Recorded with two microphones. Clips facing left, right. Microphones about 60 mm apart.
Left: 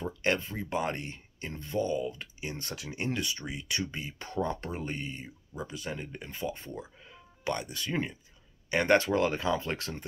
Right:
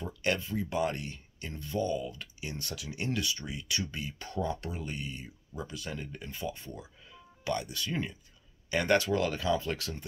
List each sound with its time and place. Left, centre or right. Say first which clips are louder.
0.0 s speech: left 2 dB; left